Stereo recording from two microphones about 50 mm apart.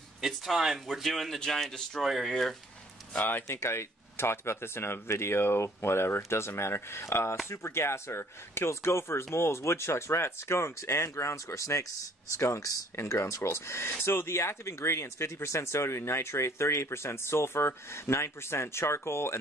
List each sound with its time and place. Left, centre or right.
0.2 s speech: centre
3.2 s speech: left
3.4 s speech: left